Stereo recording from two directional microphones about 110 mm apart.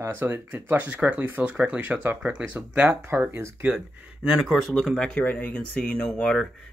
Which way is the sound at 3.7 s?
5° right (ahead or behind).